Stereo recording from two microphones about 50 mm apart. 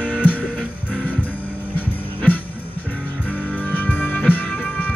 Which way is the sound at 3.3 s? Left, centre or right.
Left.